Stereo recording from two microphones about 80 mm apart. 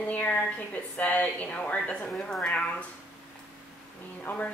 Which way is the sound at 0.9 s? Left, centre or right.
Centre.